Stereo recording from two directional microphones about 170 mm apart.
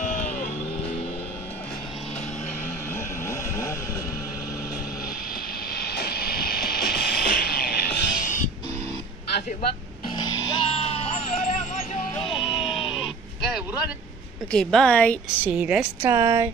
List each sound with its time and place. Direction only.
0.0 s music: 55° left (ahead or behind)
2.9 s vehicle: 15° left (ahead or behind)
5.7 s music: 65° left (ahead or behind); by 8.5 s 50° left (ahead or behind)
10.5 s vehicle: 35° left (ahead or behind)
12.3 s music: 30° left (ahead or behind)
12.9 s a sound: 5° right (ahead or behind)
14.5 s a woman's voice: 5° left (ahead or behind)
15.2 s a woman's voice: 10° right (ahead or behind)